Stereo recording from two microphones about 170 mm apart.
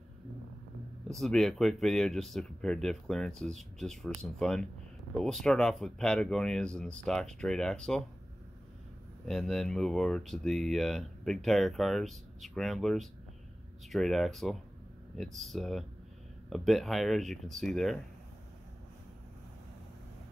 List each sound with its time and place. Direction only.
1.0 s speech: centre (ahead or behind)
9.3 s speech: centre (ahead or behind)